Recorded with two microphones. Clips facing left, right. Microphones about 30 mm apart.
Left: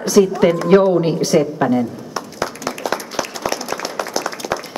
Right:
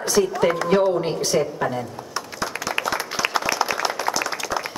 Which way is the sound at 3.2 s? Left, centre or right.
Centre.